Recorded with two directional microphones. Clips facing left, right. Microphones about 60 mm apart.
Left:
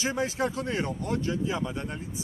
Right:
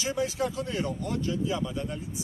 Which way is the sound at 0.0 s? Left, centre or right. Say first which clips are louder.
Left 1 dB; left.